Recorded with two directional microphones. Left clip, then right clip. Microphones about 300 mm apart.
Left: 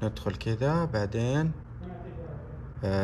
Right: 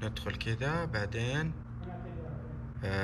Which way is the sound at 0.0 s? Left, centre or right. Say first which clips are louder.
Left 4 dB; centre.